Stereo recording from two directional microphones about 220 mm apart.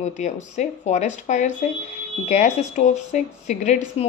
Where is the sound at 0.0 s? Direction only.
35° left (ahead or behind).